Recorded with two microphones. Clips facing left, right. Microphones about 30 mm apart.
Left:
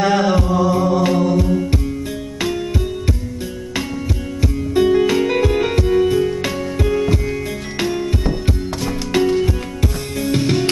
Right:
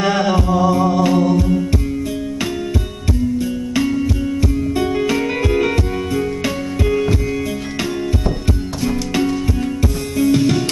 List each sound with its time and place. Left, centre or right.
0.0 s chant: centre
0.7 s music: centre
1.0 s music: centre
4.4 s music: centre
10.1 s music: left